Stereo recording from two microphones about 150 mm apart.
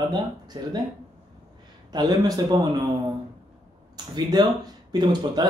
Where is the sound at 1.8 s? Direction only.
25° right (ahead or behind).